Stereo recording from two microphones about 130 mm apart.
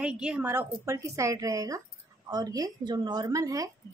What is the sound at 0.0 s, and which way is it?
A woman's voice, 5° right (ahead or behind).